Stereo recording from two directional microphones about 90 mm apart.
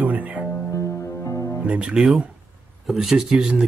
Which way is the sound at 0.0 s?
15° right (ahead or behind).